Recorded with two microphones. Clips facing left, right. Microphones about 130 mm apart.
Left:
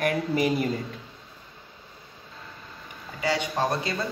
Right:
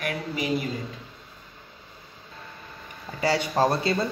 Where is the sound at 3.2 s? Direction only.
35° right (ahead or behind).